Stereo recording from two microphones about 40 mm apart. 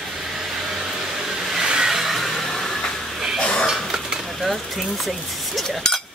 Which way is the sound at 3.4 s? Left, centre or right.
Left.